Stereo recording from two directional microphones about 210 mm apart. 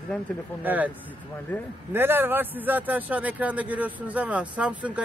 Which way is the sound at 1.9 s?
10° right (ahead or behind).